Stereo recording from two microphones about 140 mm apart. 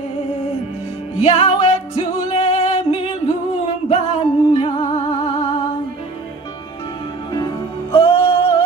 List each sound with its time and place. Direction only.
1.2 s music: 50° left (ahead or behind)
7.3 s music: 35° left (ahead or behind)